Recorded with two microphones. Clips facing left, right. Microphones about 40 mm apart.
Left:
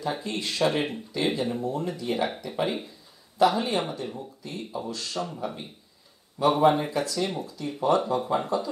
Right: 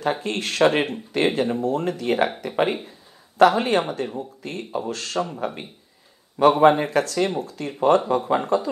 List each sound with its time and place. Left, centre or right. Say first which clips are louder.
0.0 s speech: right 6 dB; right
0.7 s speech: right 5 dB; right